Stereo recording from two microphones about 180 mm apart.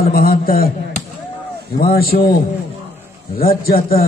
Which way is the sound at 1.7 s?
55° left (ahead or behind).